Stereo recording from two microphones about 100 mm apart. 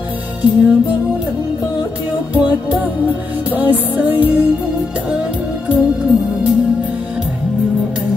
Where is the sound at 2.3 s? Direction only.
15° right (ahead or behind).